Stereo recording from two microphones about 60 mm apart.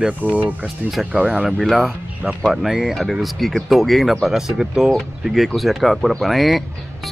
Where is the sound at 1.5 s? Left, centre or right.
Centre.